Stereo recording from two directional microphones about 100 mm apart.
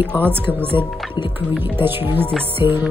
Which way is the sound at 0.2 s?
20° right (ahead or behind).